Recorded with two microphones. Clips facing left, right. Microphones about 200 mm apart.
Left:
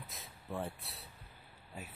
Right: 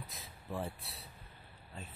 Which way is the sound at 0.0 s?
Centre (ahead or behind).